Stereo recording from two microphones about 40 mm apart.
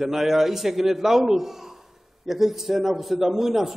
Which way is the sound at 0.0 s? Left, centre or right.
Centre.